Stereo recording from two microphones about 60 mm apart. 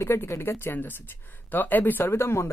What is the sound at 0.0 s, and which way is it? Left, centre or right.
Speech, left.